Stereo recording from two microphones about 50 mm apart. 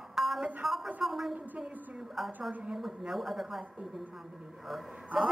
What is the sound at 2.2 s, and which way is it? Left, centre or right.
A woman's voice, centre.